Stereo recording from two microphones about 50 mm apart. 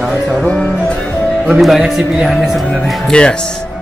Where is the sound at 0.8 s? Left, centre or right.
Centre.